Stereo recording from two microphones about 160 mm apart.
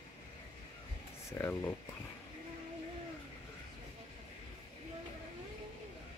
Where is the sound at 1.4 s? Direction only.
15° left (ahead or behind).